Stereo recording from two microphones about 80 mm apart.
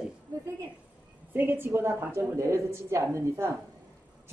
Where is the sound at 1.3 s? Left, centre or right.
Right.